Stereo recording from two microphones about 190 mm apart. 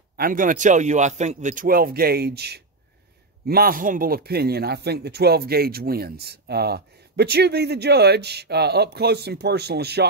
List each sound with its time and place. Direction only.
0.2 s a man's voice: 45° right (ahead or behind)